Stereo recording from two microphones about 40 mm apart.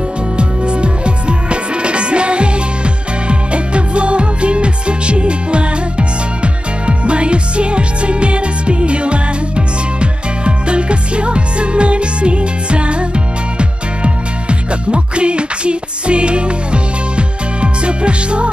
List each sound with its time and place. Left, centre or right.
0.4 s music: right